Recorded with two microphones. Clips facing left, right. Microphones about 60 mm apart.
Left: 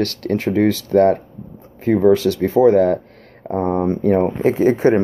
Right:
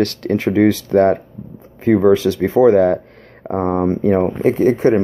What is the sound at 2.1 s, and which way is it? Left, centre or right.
Speech, right.